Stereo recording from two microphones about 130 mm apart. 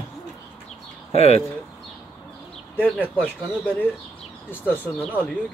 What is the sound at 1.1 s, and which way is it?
Speech, 55° left (ahead or behind).